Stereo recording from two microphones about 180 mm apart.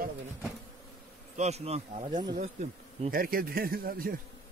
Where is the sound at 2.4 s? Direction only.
45° right (ahead or behind).